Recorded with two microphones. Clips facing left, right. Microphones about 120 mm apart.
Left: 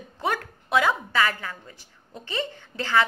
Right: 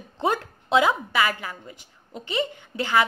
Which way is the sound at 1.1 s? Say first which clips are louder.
Right 1 dB; 10° right (ahead or behind).